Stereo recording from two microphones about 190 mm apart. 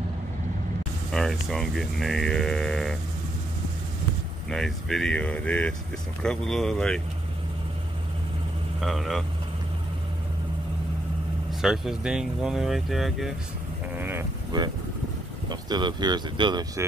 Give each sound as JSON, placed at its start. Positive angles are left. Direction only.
{"t": 1.1, "sound": "speech", "side_deg": 0}
{"t": 4.5, "sound": "speech", "side_deg": 0}
{"t": 8.8, "sound": "speech", "side_deg": 0}
{"t": 11.6, "sound": "speech", "side_deg": 0}
{"t": 13.9, "sound": "vehicle", "side_deg": -10}
{"t": 15.7, "sound": "speech", "side_deg": -20}